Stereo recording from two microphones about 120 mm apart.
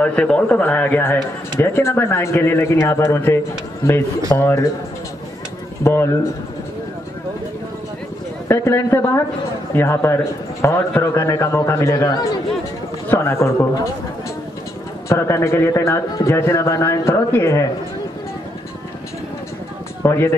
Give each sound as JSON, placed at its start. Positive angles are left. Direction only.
{"t": 0.0, "sound": "speech", "side_deg": 10}
{"t": 4.4, "sound": "speech", "side_deg": 20}
{"t": 5.9, "sound": "speech", "side_deg": 25}
{"t": 8.5, "sound": "speech", "side_deg": 20}
{"t": 15.0, "sound": "speech", "side_deg": 25}
{"t": 20.0, "sound": "speech", "side_deg": 20}